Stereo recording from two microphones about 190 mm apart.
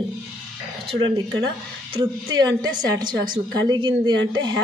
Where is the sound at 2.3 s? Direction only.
20° right (ahead or behind).